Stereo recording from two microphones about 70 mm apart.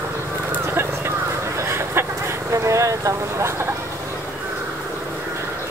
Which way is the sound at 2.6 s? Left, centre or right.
Right.